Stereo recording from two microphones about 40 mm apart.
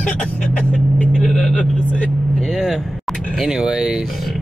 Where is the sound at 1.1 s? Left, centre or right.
Centre.